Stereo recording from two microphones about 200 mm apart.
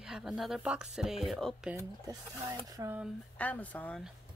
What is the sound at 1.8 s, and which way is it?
Speech, 20° right (ahead or behind).